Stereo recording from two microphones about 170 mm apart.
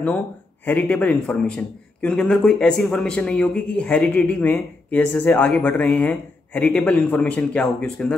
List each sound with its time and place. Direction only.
0.7 s a man's voice: 10° left (ahead or behind)